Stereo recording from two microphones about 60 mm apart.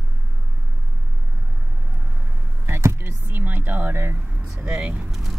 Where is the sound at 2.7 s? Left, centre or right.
Right.